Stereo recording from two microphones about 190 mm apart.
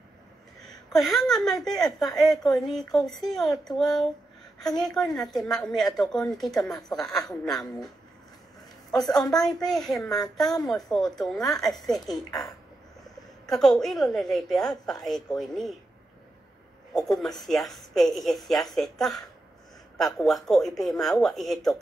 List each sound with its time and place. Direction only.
0.9 s speech: centre (ahead or behind)
9.0 s speech: centre (ahead or behind)
12.0 s speech: 20° left (ahead or behind)
13.6 s speech: centre (ahead or behind)
17.2 s speech: centre (ahead or behind)